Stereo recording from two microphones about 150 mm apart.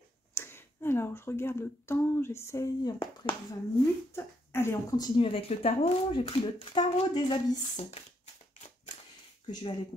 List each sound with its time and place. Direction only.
0.3 s speech: 15° left (ahead or behind)
4.1 s speech: 15° left (ahead or behind); by 8.0 s 40° left (ahead or behind)
9.5 s speech: 30° left (ahead or behind)